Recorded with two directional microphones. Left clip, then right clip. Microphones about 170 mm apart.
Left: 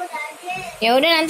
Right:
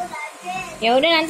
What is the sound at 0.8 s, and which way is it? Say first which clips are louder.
Speech: left 1 dB; 15° left (ahead or behind).